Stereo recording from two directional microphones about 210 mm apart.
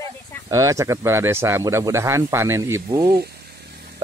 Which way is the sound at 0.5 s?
15° right (ahead or behind).